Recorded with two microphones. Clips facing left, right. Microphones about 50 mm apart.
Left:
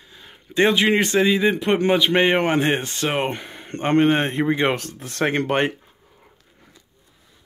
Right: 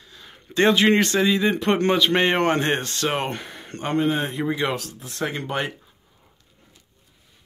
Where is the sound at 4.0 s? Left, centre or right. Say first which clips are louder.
Left 4 dB; left.